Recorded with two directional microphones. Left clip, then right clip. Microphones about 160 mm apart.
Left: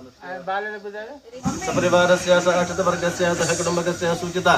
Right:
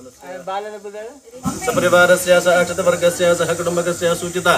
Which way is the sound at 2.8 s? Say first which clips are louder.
Right 6 dB; 35° right (ahead or behind).